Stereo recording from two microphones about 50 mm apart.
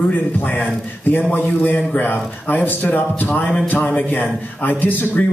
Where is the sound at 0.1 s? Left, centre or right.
Left.